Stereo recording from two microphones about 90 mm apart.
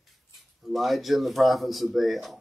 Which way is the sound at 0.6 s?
Centre (ahead or behind).